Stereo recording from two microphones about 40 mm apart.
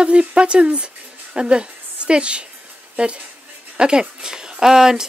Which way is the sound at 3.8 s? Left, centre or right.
Right.